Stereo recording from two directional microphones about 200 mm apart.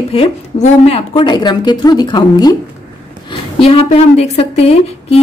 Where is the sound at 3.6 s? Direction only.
30° left (ahead or behind).